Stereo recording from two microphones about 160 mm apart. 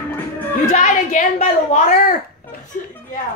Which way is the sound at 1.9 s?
60° left (ahead or behind).